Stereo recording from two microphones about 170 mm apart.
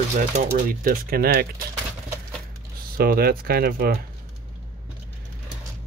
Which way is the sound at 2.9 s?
65° right (ahead or behind).